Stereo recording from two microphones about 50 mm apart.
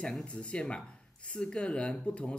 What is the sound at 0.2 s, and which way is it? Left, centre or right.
Speech, left.